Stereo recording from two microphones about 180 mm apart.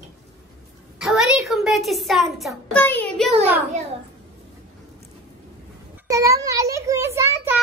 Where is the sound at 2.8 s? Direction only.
10° left (ahead or behind).